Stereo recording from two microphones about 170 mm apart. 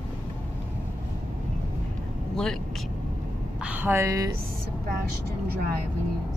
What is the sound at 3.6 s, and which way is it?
Speech, 10° right (ahead or behind).